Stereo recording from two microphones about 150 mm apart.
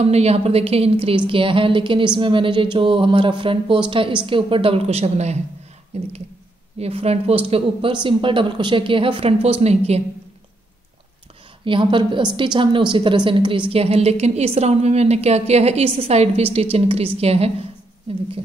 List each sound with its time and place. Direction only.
0.0 s a woman's voice: 45° right (ahead or behind)
11.6 s a woman's voice: 35° right (ahead or behind)